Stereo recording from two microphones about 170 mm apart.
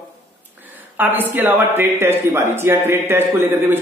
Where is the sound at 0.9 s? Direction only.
10° right (ahead or behind).